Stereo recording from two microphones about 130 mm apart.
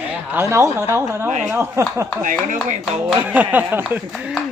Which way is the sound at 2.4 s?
65° right (ahead or behind).